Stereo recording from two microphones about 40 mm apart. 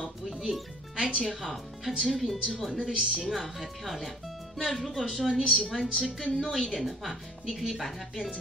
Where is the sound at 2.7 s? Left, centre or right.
Centre.